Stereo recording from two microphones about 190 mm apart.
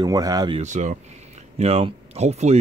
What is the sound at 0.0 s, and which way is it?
Speech, 20° right (ahead or behind).